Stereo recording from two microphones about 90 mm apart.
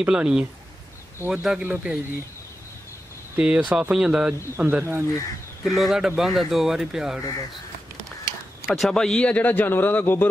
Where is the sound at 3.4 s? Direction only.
10° right (ahead or behind).